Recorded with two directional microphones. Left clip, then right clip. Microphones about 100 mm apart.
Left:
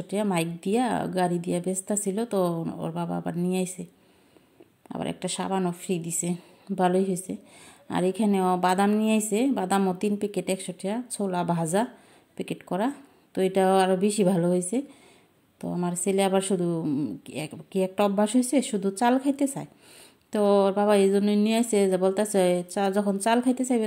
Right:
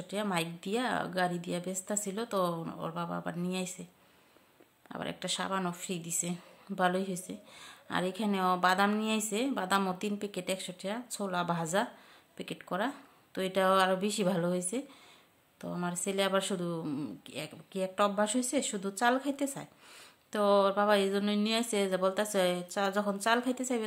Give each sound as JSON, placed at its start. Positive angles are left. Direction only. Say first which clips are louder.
{"t": 0.1, "sound": "a woman's voice", "louder": "left 6 dB", "side_deg": 35}
{"t": 4.8, "sound": "a woman's voice", "louder": "left 5 dB", "side_deg": 35}
{"t": 17.3, "sound": "a woman's voice", "louder": "left 7 dB", "side_deg": 45}